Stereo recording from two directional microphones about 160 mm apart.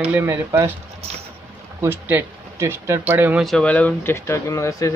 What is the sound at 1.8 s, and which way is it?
Speech, 15° right (ahead or behind).